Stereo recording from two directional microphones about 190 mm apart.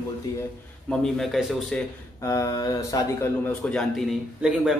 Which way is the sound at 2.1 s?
15° left (ahead or behind).